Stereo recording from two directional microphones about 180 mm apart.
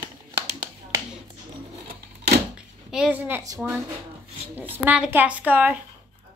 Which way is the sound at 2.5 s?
5° right (ahead or behind).